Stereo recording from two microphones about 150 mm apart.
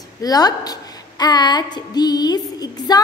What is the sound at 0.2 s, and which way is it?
A woman's voice, 25° left (ahead or behind).